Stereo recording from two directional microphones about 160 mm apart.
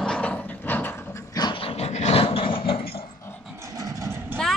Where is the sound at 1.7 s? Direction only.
40° left (ahead or behind).